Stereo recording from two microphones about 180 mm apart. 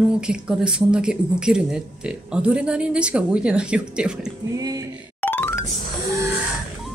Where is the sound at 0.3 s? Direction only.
5° right (ahead or behind).